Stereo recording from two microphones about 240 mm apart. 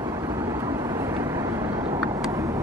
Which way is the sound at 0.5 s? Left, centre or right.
Centre.